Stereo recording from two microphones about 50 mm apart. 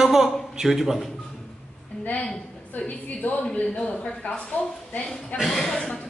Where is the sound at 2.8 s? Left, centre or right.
Left.